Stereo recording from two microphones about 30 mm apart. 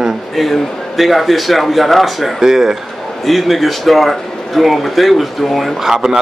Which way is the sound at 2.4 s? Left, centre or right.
Centre.